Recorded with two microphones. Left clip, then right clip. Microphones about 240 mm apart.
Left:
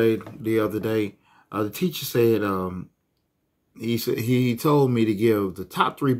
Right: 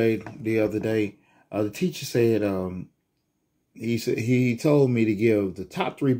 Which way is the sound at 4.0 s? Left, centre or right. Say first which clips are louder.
Even; centre.